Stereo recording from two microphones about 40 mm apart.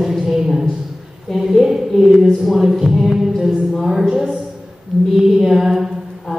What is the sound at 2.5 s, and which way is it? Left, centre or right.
A woman's voice, centre.